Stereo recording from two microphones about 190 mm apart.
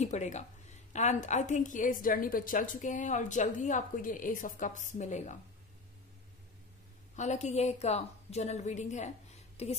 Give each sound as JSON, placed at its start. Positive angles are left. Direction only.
{"t": 0.0, "sound": "a woman's voice", "side_deg": 35}
{"t": 7.2, "sound": "a woman's voice", "side_deg": 40}